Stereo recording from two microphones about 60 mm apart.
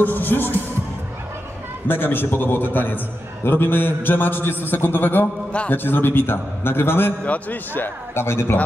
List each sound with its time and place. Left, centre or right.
0.0 s a man's voice: left
1.9 s a man's voice: left
7.2 s a man's voice: left